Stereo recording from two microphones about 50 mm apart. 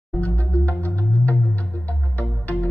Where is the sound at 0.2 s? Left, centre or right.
Left.